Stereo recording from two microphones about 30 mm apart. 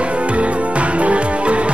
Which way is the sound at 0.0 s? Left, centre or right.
Right.